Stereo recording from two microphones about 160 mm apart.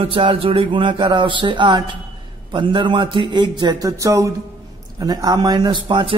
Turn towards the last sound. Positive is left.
turn(degrees=-30)  # may be behind; listen again after turning